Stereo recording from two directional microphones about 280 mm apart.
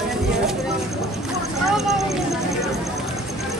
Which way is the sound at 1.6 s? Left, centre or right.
Centre.